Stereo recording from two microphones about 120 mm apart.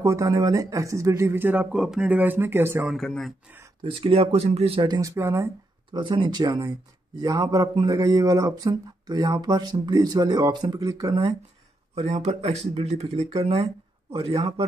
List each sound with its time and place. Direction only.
0.0 s speech: 25° right (ahead or behind)
3.1 s speech: centre (ahead or behind)
3.8 s speech: 50° right (ahead or behind)
4.8 s a man's voice: 35° right (ahead or behind)
5.1 s speech: 25° right (ahead or behind)
5.9 s a man's voice: 40° right (ahead or behind)
11.9 s speech: 60° right (ahead or behind)